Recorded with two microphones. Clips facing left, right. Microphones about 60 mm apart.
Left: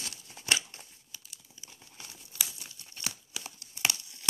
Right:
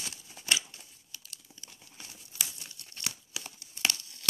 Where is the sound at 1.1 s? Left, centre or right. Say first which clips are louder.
Right 2 dB; centre.